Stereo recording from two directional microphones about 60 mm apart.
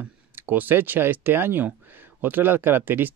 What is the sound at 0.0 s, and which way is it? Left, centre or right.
Speech, right.